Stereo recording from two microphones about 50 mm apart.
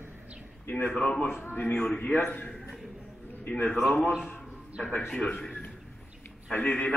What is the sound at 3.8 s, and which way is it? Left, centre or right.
Speech, left.